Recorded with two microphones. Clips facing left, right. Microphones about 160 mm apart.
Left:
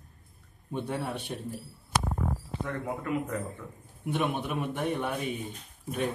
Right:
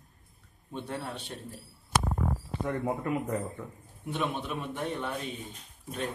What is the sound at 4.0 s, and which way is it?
Speech, 10° left (ahead or behind).